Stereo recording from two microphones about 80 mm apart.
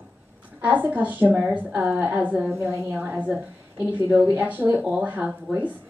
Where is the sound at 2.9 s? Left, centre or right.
Right.